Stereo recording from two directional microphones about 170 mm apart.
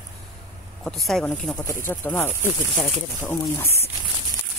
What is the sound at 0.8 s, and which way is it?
Speech, centre (ahead or behind).